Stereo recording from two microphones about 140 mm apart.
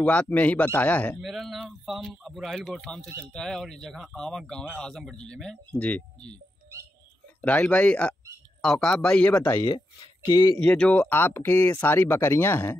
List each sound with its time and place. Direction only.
0.0 s speech: 10° left (ahead or behind)
1.2 s speech: centre (ahead or behind)
7.4 s speech: 10° left (ahead or behind)
9.6 s speech: 35° left (ahead or behind)
10.6 s speech: 10° left (ahead or behind)